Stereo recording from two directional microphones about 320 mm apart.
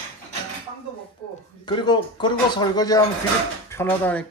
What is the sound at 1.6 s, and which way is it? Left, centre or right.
Speech, centre.